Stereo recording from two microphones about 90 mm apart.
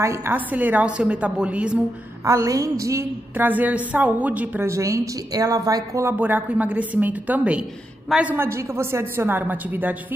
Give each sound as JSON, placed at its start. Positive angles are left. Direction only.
{"t": 0.0, "sound": "a woman's voice", "side_deg": -30}
{"t": 2.2, "sound": "speech", "side_deg": -35}
{"t": 3.3, "sound": "a woman's voice", "side_deg": -20}
{"t": 4.6, "sound": "speech", "side_deg": -35}
{"t": 6.0, "sound": "a woman's voice", "side_deg": -20}
{"t": 8.4, "sound": "a woman's voice", "side_deg": -30}